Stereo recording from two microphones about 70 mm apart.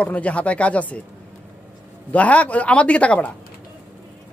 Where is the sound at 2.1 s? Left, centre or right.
Centre.